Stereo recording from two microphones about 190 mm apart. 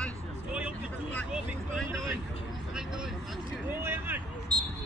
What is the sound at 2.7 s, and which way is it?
Vehicle, 5° right (ahead or behind).